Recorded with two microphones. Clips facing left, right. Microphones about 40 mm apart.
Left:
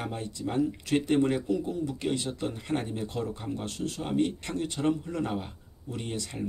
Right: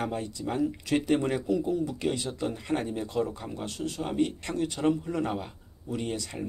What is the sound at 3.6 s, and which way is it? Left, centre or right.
Speech, centre.